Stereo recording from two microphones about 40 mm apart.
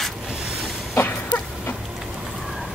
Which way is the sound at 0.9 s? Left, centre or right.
Left.